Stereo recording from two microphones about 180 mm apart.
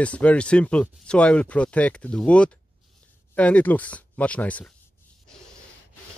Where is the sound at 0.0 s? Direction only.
5° left (ahead or behind).